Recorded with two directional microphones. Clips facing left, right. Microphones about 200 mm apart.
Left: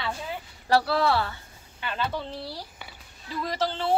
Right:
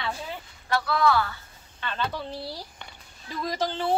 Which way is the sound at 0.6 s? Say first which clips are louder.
Left 1 dB; 35° left (ahead or behind).